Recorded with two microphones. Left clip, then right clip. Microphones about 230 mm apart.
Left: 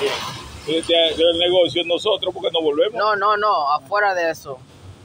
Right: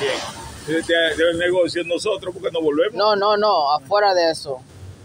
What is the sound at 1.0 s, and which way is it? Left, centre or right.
A man's voice, right.